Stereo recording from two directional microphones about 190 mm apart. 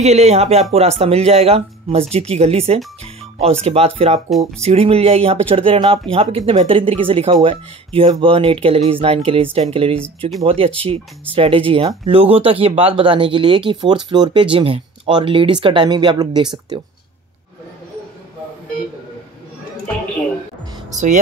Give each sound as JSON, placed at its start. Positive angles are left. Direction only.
{"t": 0.0, "sound": "speech", "side_deg": -35}
{"t": 20.9, "sound": "speech", "side_deg": -40}